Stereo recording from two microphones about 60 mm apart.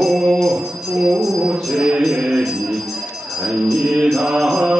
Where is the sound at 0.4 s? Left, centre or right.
Centre.